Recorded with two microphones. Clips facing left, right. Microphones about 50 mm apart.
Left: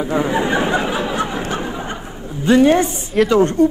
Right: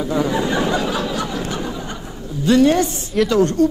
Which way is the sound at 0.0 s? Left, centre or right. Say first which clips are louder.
Left 1 dB; left.